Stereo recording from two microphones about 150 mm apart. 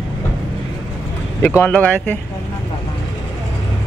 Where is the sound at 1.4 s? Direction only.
10° left (ahead or behind).